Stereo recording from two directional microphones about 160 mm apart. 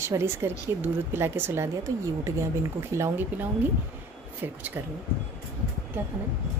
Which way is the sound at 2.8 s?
15° right (ahead or behind).